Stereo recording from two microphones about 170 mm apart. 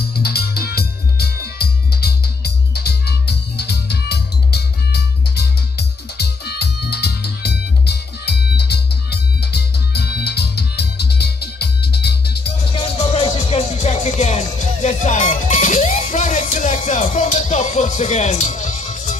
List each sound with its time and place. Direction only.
0.1 s music: 70° left (ahead or behind)
12.7 s music: 35° left (ahead or behind)